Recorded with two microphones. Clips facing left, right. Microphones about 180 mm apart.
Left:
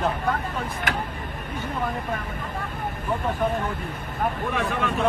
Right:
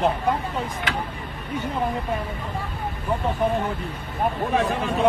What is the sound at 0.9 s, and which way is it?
Speech, 50° left (ahead or behind).